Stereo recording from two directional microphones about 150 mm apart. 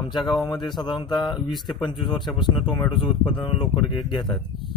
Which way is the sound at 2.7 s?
30° left (ahead or behind).